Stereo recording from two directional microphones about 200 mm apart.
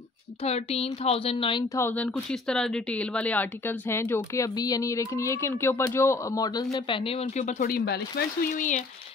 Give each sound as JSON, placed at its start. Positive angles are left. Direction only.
{"t": 0.4, "sound": "speech", "side_deg": 30}
{"t": 1.8, "sound": "speech", "side_deg": 10}